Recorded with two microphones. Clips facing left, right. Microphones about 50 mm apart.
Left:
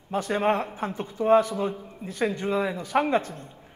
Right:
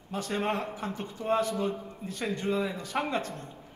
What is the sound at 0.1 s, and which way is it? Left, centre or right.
A man's voice, left.